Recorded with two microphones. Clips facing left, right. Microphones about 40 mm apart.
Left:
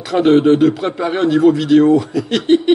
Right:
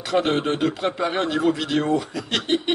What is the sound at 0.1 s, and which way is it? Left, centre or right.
Speech, centre.